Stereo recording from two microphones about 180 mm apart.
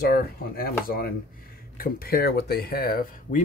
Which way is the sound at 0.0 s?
55° left (ahead or behind).